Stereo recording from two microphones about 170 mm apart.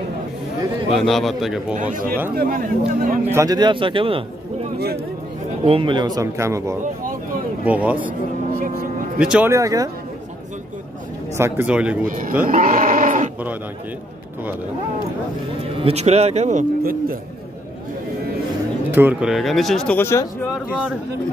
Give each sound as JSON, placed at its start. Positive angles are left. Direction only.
{"t": 0.9, "sound": "speech", "side_deg": 0}
{"t": 1.8, "sound": "speech", "side_deg": -50}
{"t": 3.3, "sound": "speech", "side_deg": -20}
{"t": 5.7, "sound": "speech", "side_deg": -30}
{"t": 8.5, "sound": "vehicle", "side_deg": -55}
{"t": 9.2, "sound": "speech", "side_deg": -5}
{"t": 9.5, "sound": "speech", "side_deg": -20}
{"t": 11.3, "sound": "speech", "side_deg": -15}
{"t": 12.1, "sound": "speech", "side_deg": -50}
{"t": 12.4, "sound": "livestock", "side_deg": -50}
{"t": 15.6, "sound": "speech", "side_deg": -35}
{"t": 18.9, "sound": "speech", "side_deg": -10}
{"t": 20.0, "sound": "speech", "side_deg": 15}